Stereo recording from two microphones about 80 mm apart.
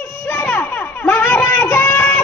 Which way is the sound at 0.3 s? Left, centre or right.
Left.